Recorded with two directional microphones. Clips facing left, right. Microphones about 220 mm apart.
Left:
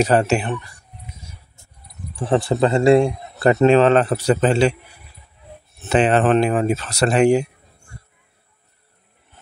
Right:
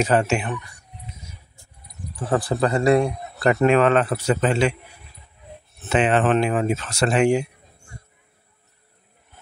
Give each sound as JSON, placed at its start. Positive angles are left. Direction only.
{"t": 0.0, "sound": "speech", "side_deg": 35}
{"t": 2.1, "sound": "a man's voice", "side_deg": 25}
{"t": 5.9, "sound": "speech", "side_deg": 35}